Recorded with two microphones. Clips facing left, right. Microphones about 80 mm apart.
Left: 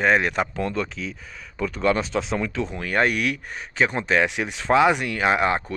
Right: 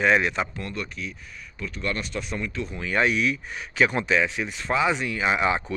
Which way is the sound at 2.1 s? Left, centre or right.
Left.